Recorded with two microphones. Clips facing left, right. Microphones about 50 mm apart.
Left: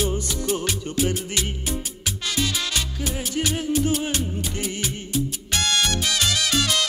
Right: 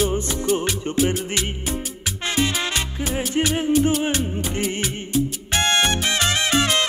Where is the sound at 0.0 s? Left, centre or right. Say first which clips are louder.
Right 3 dB; right.